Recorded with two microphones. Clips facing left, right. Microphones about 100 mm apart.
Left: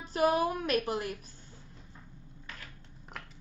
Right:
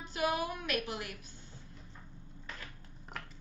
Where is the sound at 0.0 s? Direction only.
35° left (ahead or behind).